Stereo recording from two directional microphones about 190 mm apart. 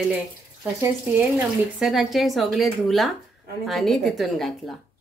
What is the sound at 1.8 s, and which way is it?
Speech, centre (ahead or behind).